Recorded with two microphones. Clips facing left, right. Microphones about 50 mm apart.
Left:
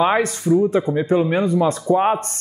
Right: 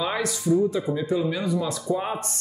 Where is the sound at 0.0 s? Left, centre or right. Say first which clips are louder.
Left 8 dB; left.